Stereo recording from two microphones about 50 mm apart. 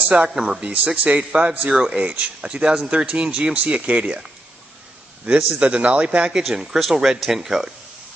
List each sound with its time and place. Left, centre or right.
0.3 s speech: centre
1.7 s speech: centre
5.3 s speech: right; by 7.7 s centre